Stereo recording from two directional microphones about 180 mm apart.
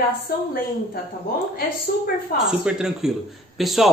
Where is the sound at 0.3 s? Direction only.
60° left (ahead or behind).